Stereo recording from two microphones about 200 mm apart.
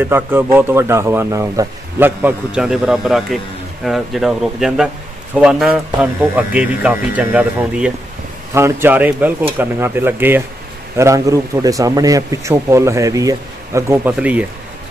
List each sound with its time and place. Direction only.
0.0 s a man's voice: 10° right (ahead or behind)